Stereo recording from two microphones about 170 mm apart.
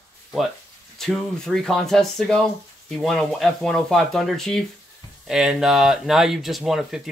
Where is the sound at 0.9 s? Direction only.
Centre (ahead or behind).